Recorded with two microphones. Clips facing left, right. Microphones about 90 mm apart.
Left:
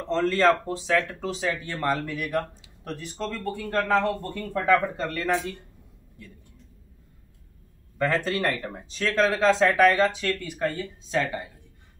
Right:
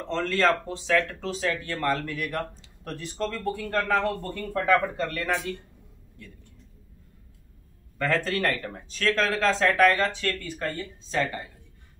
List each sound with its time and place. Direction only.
0.1 s speech: 5° left (ahead or behind)
2.1 s speech: 5° left (ahead or behind)
3.7 s a man's voice: 15° left (ahead or behind)
8.0 s speech: 15° left (ahead or behind)